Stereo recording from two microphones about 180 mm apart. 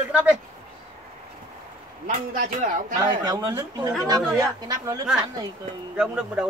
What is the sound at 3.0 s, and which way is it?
Speech, 20° right (ahead or behind).